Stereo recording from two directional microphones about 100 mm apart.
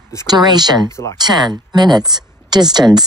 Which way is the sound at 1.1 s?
45° right (ahead or behind).